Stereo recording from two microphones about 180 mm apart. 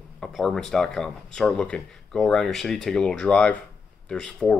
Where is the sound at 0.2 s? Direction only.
Centre (ahead or behind).